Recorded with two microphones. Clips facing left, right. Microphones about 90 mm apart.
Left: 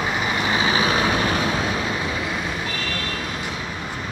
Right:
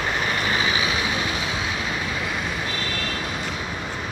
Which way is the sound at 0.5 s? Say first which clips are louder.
Left 3 dB; 30° left (ahead or behind).